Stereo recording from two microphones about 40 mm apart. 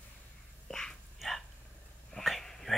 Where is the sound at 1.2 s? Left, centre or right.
Centre.